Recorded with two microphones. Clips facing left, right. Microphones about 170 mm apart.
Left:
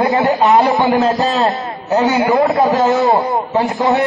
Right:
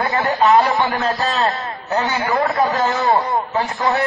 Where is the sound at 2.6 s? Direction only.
20° left (ahead or behind).